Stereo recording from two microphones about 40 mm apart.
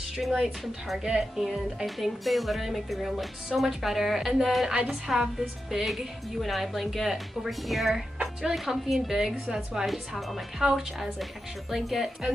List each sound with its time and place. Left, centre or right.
0.2 s a woman's voice: centre
1.0 s a woman's voice: centre
2.0 s a woman's voice: centre
5.9 s a woman's voice: centre
9.1 s a woman's voice: centre
9.8 s a woman's voice: centre
10.6 s a woman's voice: centre